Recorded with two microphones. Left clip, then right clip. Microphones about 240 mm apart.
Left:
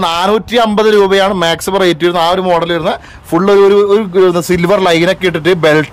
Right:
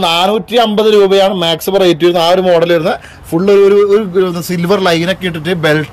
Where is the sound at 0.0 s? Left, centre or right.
Centre.